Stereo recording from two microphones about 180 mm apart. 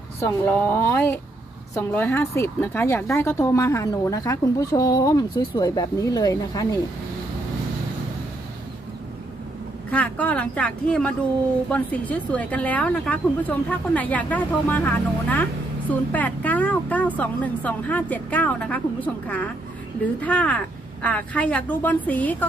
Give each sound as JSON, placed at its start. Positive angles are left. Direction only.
{"t": 0.2, "sound": "speech", "side_deg": 15}
{"t": 9.8, "sound": "speech", "side_deg": 10}